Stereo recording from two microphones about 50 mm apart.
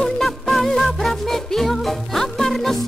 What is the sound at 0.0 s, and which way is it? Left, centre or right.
Music, centre.